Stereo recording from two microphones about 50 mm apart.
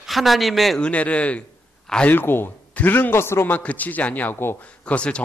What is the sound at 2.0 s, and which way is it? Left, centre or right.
A man's voice, left.